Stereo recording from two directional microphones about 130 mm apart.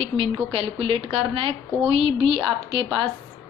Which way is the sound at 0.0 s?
45° right (ahead or behind).